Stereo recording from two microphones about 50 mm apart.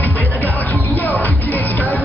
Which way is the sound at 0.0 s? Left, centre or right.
Left.